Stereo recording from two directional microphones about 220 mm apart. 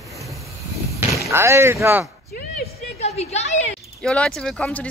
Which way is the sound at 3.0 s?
30° left (ahead or behind).